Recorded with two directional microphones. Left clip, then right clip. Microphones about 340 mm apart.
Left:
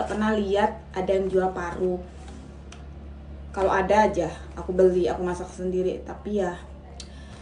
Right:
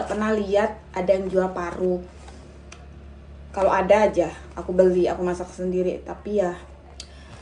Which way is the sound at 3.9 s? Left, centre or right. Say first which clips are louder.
Right 2 dB; centre.